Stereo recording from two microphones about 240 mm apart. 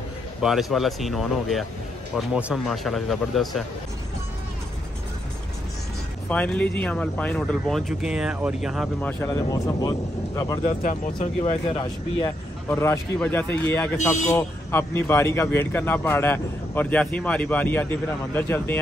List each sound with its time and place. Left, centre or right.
0.4 s speech: centre
6.2 s speech: centre
9.2 s speech: centre
10.8 s speech: left; by 18.8 s centre